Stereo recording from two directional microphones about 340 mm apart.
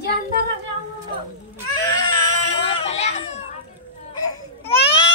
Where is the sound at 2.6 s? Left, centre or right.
Centre.